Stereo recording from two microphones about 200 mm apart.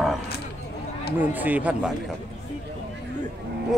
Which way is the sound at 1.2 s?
10° right (ahead or behind).